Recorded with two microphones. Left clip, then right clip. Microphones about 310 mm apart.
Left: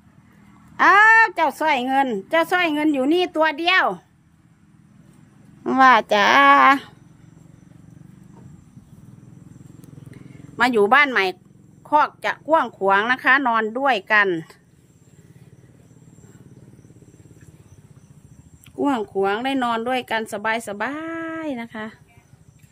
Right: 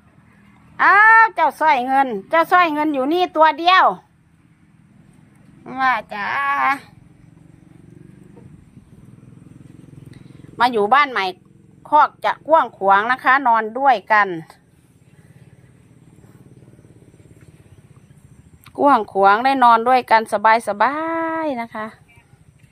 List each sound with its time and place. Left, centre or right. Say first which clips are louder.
0.7 s a woman's voice: right 2 dB; centre
5.6 s a woman's voice: left 5 dB; centre
10.1 s a woman's voice: right 2 dB; centre
18.8 s speech: right 8 dB; centre